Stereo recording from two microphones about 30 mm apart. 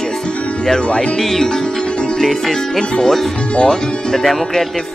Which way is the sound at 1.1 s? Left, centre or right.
Centre.